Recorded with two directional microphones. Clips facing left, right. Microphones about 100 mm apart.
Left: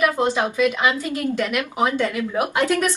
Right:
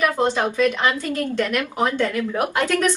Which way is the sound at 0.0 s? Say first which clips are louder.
Even; 15° left (ahead or behind).